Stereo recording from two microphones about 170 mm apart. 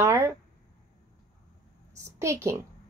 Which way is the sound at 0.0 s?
15° right (ahead or behind).